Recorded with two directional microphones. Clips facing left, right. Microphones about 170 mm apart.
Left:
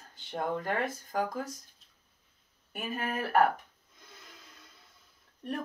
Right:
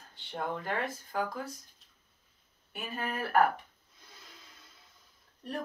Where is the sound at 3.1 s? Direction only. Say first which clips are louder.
Left 2 dB; 40° left (ahead or behind).